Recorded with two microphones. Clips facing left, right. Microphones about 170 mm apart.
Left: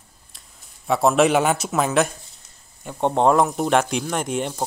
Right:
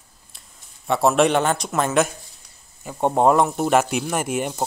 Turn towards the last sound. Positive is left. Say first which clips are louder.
# right 1 dB
turn(degrees=-10)  # may be behind; listen again after turning